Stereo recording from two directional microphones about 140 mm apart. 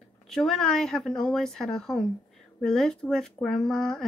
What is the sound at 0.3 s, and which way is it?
Speech, 5° left (ahead or behind).